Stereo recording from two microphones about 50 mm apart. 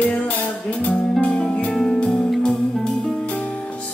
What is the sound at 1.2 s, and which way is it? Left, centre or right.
Music, centre.